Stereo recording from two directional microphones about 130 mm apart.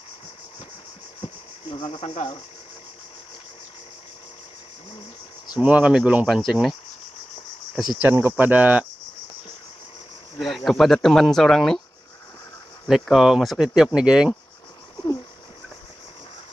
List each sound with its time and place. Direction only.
1.2 s insect: 40° left (ahead or behind)
5.6 s speech: 10° right (ahead or behind)
8.0 s speech: 15° right (ahead or behind)
10.4 s speech: centre (ahead or behind)
12.8 s speech: centre (ahead or behind)